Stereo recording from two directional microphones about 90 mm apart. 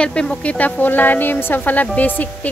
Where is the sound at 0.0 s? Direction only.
10° left (ahead or behind).